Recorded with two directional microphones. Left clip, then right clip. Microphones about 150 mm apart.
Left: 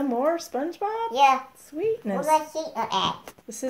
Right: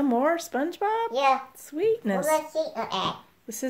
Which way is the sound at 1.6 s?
40° right (ahead or behind).